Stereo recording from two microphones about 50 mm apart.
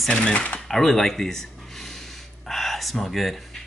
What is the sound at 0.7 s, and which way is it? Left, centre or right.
Speech, centre.